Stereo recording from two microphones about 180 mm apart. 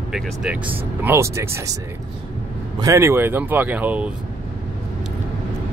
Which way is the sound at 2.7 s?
15° right (ahead or behind).